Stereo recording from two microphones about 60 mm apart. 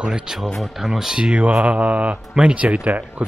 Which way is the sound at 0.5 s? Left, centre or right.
Centre.